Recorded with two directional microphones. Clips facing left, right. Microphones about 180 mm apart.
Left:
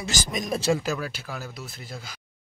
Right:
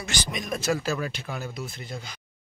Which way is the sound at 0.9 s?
5° left (ahead or behind).